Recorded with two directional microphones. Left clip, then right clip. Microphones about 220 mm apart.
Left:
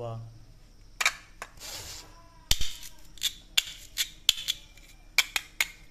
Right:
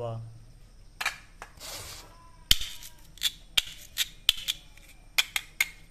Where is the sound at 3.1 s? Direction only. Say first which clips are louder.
Right 1 dB; 10° right (ahead or behind).